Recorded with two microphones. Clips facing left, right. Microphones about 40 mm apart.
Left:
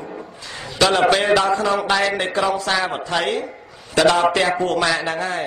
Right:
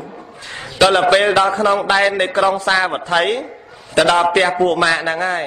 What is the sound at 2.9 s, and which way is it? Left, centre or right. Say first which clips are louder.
Speech: right 4 dB; right.